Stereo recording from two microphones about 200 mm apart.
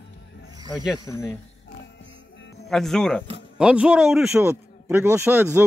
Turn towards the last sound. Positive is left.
turn(degrees=-10)  # may be behind; listen again after turning